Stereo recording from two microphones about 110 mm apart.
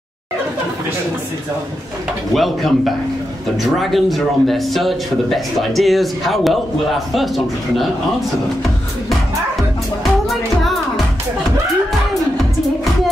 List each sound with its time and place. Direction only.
2.3 s a man's voice: centre (ahead or behind)
10.2 s music: centre (ahead or behind)